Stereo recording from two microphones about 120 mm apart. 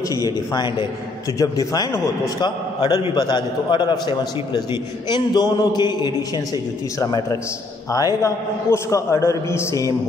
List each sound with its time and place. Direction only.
0.1 s a man's voice: 30° left (ahead or behind)